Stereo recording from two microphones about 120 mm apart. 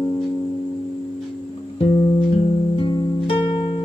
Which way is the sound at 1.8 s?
60° left (ahead or behind).